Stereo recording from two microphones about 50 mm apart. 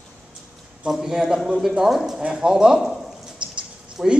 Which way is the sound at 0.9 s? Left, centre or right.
Centre.